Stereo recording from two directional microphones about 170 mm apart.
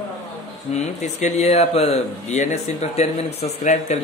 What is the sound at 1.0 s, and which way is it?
Speech, 45° left (ahead or behind).